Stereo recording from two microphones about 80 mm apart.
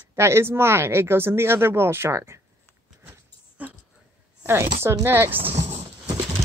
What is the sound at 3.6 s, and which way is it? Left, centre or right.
Dog, right.